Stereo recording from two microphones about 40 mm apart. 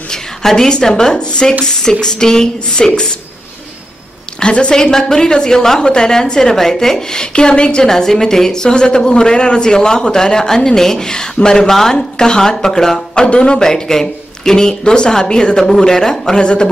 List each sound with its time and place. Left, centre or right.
0.1 s a woman's voice: centre
4.4 s a man's voice: left
4.9 s a woman's voice: centre
7.8 s a woman's voice: centre
13.7 s a woman's voice: centre